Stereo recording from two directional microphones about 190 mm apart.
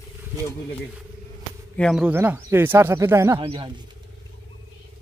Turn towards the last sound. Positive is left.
turn(degrees=-25)  # may be behind; listen again after turning